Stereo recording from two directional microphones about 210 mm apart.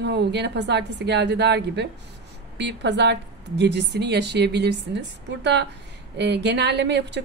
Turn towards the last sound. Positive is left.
turn(degrees=-55)  # may be behind; listen again after turning